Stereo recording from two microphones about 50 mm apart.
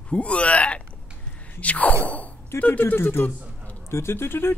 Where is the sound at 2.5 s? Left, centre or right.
Left.